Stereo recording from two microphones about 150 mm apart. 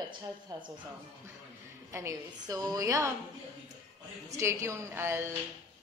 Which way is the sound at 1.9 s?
20° right (ahead or behind).